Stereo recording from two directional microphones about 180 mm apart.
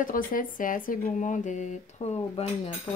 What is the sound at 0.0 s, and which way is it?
Speech, 50° left (ahead or behind).